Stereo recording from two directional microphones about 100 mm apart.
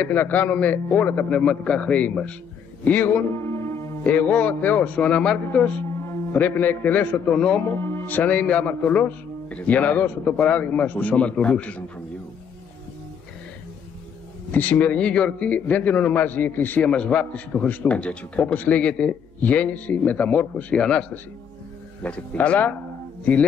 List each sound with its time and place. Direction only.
0.0 s a man's voice: 20° left (ahead or behind)
4.0 s a man's voice: 15° left (ahead or behind)
5.9 s a man's voice: 25° left (ahead or behind); by 7.6 s 10° left (ahead or behind)
7.6 s a man's voice: 25° left (ahead or behind)
14.5 s a man's voice: 15° left (ahead or behind)